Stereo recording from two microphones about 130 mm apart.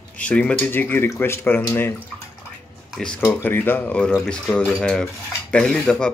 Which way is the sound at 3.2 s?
15° left (ahead or behind).